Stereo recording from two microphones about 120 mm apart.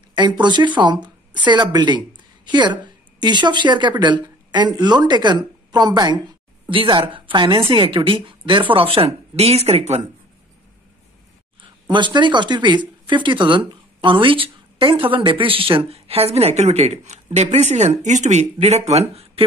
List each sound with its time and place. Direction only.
0.1 s speech: 40° right (ahead or behind)
6.7 s speech: 45° right (ahead or behind); by 10.0 s 60° right (ahead or behind)
11.9 s speech: 40° right (ahead or behind); by 19.4 s 60° right (ahead or behind)